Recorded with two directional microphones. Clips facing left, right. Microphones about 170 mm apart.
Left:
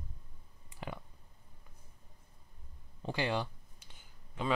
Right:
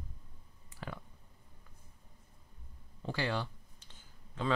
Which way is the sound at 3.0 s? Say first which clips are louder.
Left 1 dB; 20° left (ahead or behind).